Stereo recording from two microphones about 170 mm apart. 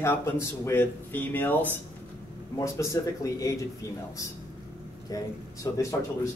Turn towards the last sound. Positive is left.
turn(degrees=20)  # may be behind; listen again after turning